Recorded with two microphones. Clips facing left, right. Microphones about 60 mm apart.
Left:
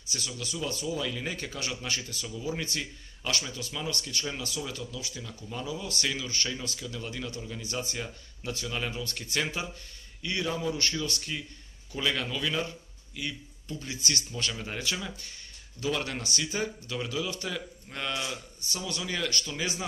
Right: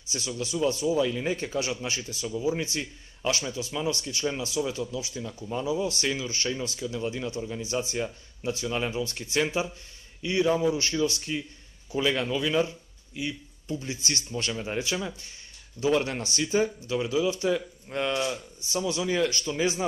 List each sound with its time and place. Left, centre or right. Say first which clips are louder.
0.4 s a man's voice: right 9 dB; right
15.8 s a man's voice: right 6 dB; right